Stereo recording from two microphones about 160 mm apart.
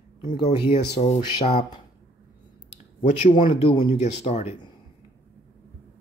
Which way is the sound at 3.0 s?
50° left (ahead or behind).